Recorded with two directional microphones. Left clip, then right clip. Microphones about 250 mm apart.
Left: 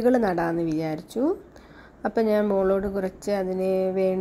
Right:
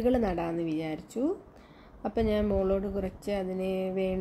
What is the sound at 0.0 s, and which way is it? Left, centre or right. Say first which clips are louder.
A woman's voice: left 6 dB; centre.